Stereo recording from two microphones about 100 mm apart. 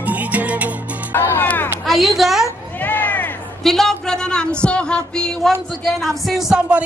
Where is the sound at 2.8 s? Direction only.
20° left (ahead or behind).